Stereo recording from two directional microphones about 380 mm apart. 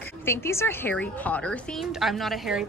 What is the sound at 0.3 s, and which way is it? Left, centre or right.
A woman's voice, centre.